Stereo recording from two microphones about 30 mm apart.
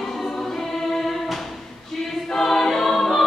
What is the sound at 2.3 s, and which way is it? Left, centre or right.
Choir, centre.